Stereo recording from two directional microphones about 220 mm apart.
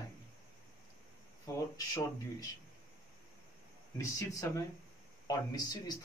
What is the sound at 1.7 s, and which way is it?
Speech, 15° left (ahead or behind).